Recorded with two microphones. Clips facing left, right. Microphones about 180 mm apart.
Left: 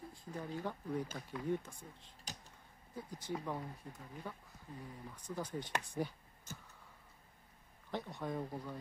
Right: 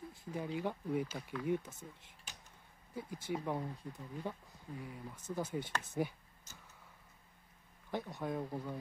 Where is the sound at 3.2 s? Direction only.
15° right (ahead or behind).